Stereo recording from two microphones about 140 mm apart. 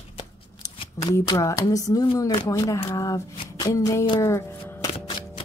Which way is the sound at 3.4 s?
30° left (ahead or behind).